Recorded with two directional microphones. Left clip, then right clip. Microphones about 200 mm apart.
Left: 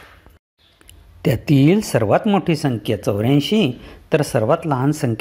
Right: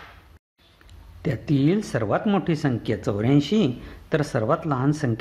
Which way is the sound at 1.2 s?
30° left (ahead or behind).